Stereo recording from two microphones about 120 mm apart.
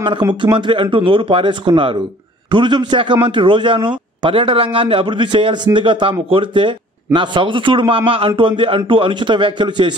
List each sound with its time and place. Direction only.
0.0 s a man's voice: 40° right (ahead or behind)